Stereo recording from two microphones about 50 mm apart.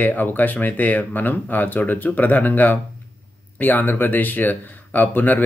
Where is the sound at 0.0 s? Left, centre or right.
Left.